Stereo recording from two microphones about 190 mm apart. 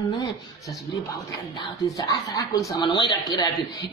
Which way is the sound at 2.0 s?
20° left (ahead or behind).